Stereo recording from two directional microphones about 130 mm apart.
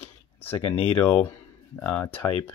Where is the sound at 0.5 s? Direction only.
50° left (ahead or behind).